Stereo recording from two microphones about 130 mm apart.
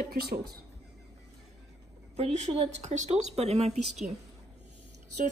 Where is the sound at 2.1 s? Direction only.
60° right (ahead or behind).